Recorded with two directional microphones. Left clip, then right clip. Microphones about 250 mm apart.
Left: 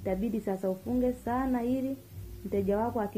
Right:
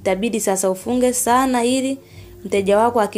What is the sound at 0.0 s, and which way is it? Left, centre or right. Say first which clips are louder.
A woman's voice: right 13 dB; right.